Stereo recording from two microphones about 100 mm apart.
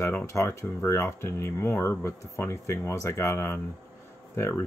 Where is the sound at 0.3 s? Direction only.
30° left (ahead or behind).